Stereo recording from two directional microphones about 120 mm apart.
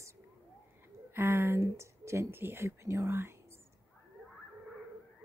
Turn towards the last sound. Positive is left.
turn(degrees=-20)  # may be behind; listen again after turning